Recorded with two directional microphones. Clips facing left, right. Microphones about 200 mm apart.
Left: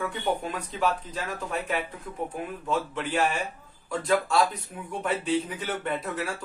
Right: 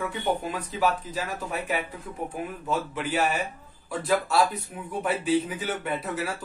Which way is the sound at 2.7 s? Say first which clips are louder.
Even; 5° right (ahead or behind).